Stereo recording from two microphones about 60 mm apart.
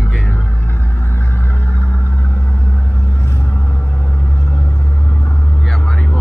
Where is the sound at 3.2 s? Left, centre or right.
Left.